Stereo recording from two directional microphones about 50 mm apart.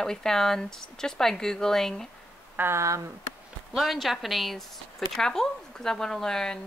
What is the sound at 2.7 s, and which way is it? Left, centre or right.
Speech, right.